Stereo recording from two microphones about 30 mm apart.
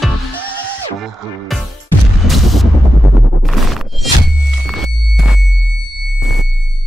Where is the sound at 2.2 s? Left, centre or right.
Centre.